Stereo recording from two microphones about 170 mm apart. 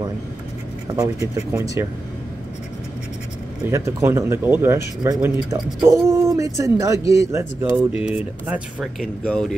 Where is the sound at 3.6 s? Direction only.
15° right (ahead or behind).